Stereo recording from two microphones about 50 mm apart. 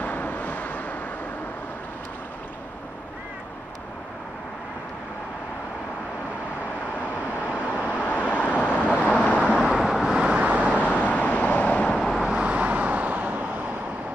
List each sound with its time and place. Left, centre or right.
0.0 s vehicle: left
7.8 s vehicle: left
9.5 s vehicle: centre
10.4 s vehicle: right
10.8 s vehicle: left
12.2 s vehicle: centre
12.4 s vehicle: right